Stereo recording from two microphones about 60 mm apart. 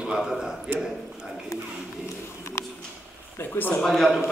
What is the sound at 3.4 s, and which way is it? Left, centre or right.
Speech, left.